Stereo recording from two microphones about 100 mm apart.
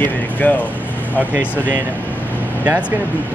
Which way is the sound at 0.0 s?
15° left (ahead or behind).